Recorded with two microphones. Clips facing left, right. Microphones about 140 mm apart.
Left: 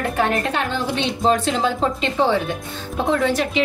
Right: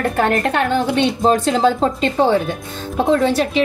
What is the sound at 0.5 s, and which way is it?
A woman's voice, 55° right (ahead or behind).